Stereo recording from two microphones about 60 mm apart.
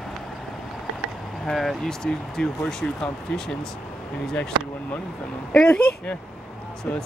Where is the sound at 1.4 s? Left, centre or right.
Centre.